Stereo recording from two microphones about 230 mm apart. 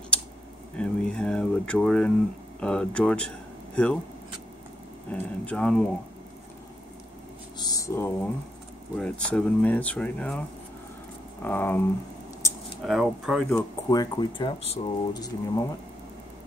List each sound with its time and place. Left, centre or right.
0.7 s a sound: centre
2.6 s speech: centre
5.1 s speech: centre
7.5 s speech: centre
11.4 s speech: centre
12.8 s speech: centre
13.6 s speech: centre